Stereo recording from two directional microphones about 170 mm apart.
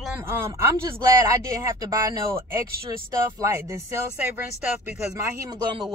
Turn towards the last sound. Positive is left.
turn(degrees=-25)  # may be behind; listen again after turning